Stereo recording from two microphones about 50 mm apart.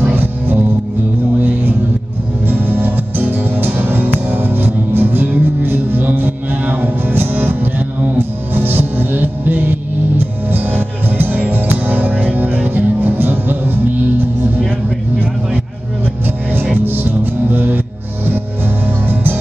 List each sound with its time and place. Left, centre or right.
0.1 s music: right
16.7 s music: right